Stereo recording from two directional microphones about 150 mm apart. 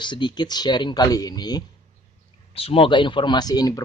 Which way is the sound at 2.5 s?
40° left (ahead or behind).